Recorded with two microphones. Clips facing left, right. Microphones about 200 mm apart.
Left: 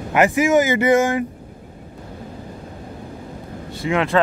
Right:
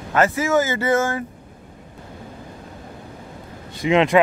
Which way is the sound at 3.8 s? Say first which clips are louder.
Right 3 dB; 20° right (ahead or behind).